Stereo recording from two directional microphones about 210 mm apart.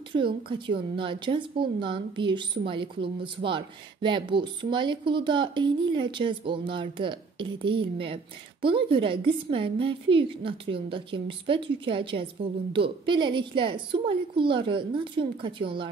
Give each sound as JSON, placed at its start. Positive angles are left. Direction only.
{"t": 0.1, "sound": "a woman's voice", "side_deg": -25}